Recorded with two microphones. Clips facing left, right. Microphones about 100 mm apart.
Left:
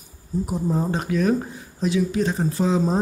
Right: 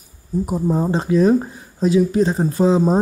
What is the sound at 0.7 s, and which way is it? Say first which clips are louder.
Speech: right 6 dB; 30° right (ahead or behind).